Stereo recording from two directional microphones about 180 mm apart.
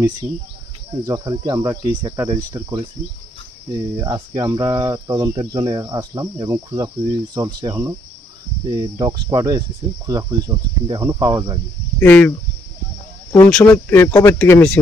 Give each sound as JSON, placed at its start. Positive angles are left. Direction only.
{"t": 1.0, "sound": "speech", "side_deg": -20}
{"t": 4.4, "sound": "speech", "side_deg": -20}
{"t": 12.0, "sound": "speech", "side_deg": 10}